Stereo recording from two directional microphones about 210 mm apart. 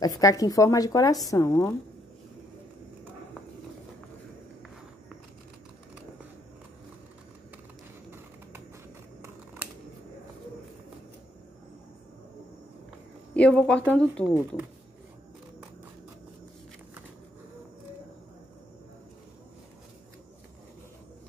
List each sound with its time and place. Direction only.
0.0 s speech: 15° left (ahead or behind)
13.3 s speech: 5° left (ahead or behind)